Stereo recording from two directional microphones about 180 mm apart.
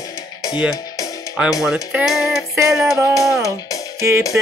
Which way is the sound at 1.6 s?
Centre (ahead or behind).